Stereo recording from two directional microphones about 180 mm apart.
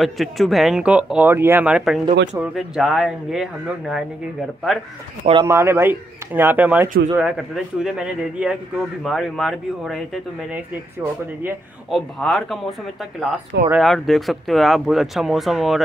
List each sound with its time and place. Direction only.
0.0 s speech: centre (ahead or behind)
5.2 s speech: 25° right (ahead or behind)
5.5 s speech: 15° right (ahead or behind)
11.9 s speech: centre (ahead or behind)